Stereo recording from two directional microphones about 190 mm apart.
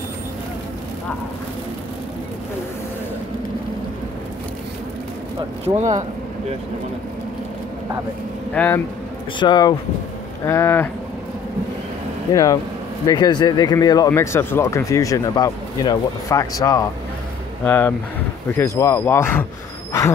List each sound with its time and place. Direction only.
5.8 s speech: 40° right (ahead or behind)
8.5 s speech: 10° left (ahead or behind)
9.4 s speech: 25° left (ahead or behind)
13.0 s speech: 20° left (ahead or behind)